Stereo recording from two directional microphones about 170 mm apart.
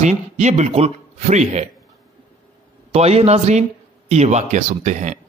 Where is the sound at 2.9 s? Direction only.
40° right (ahead or behind).